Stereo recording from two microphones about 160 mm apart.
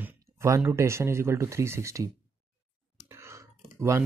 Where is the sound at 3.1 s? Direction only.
20° right (ahead or behind).